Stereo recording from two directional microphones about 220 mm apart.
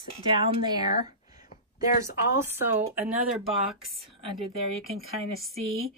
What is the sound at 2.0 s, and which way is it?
Speech, 10° right (ahead or behind).